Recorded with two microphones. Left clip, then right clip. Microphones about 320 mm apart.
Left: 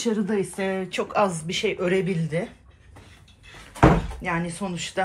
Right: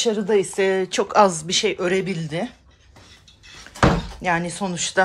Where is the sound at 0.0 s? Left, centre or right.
Centre.